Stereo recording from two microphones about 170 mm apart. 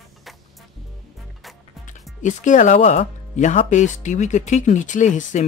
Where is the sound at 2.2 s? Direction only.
45° left (ahead or behind).